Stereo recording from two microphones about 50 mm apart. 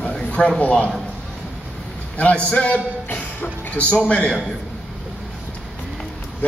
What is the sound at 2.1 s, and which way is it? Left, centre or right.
A man's voice, left.